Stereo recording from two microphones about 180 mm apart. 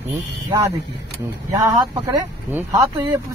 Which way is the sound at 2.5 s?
10° right (ahead or behind).